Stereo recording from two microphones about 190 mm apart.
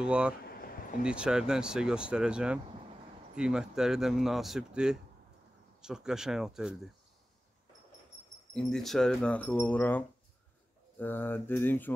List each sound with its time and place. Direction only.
0.0 s speech: 5° right (ahead or behind)
0.5 s a sound: 50° left (ahead or behind)
1.0 s speech: 5° right (ahead or behind)
8.5 s speech: 5° left (ahead or behind)